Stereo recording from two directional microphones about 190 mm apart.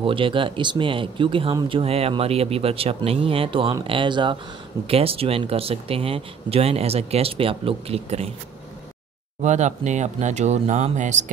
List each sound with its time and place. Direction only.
0.0 s speech: 25° right (ahead or behind)
9.4 s speech: 40° right (ahead or behind)